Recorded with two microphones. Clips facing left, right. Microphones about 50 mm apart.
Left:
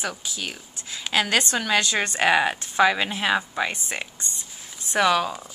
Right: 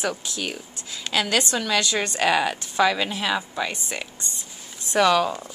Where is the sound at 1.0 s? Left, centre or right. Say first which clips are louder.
Left 1 dB; left.